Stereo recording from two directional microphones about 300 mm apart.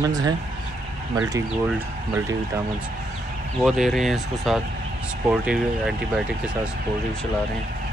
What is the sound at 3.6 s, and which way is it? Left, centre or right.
Speech, centre.